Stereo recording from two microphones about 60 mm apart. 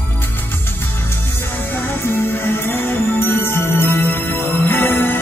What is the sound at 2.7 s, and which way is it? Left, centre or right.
Music, left.